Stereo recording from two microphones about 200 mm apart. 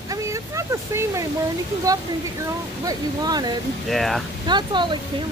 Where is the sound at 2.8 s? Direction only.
20° right (ahead or behind).